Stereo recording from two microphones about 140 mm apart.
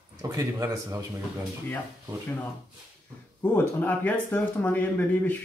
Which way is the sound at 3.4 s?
15° left (ahead or behind).